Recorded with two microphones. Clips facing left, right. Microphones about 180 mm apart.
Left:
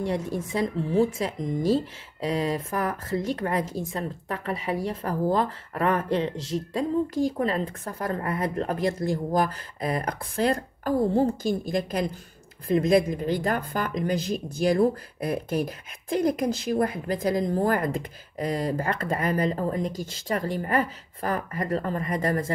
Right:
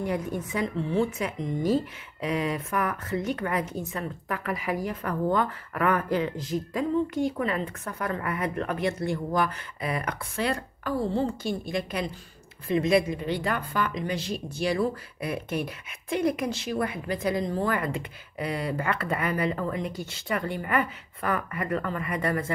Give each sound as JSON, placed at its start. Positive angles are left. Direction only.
{"t": 0.0, "sound": "a woman's voice", "side_deg": 30}
{"t": 6.3, "sound": "speech", "side_deg": 90}
{"t": 6.7, "sound": "a woman's voice", "side_deg": 35}